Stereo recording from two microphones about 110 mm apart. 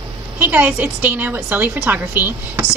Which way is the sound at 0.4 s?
15° right (ahead or behind).